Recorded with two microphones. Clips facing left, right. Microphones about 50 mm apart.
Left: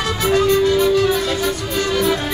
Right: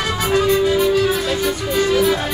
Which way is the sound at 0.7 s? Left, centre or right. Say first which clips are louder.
Left 1 dB; centre.